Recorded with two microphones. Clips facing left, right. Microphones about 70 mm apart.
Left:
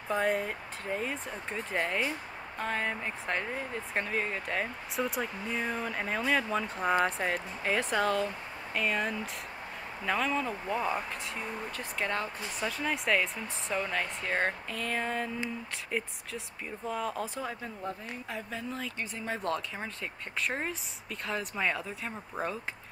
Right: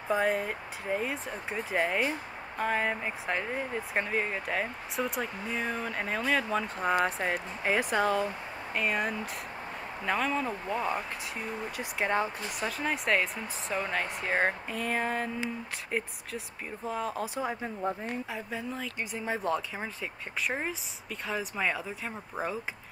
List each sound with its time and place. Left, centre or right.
0.1 s speech: centre
12.5 s speech: centre
17.4 s speech: right
18.3 s speech: centre